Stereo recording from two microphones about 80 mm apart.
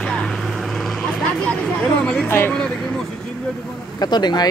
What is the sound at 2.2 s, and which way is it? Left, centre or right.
Speech, left.